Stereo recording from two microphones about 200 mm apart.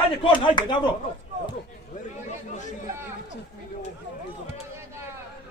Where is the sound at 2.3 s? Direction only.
35° left (ahead or behind).